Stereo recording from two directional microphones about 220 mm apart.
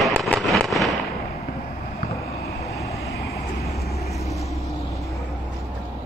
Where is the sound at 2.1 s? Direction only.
15° left (ahead or behind).